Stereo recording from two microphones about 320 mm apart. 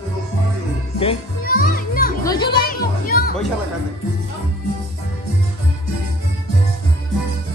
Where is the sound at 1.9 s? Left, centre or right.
Left.